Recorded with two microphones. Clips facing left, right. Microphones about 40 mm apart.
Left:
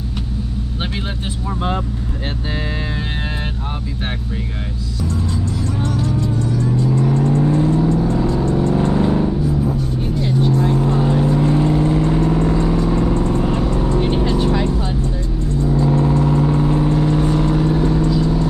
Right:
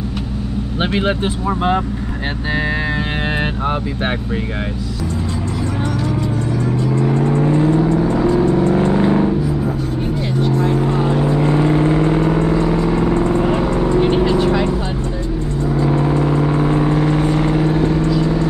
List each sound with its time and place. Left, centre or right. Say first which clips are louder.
0.9 s speech: right 8 dB; right
5.8 s vehicle: even; centre
7.2 s vehicle: right 2 dB; right
10.7 s vehicle: even; right
14.0 s vehicle: right 4 dB; right
15.7 s vehicle: even; right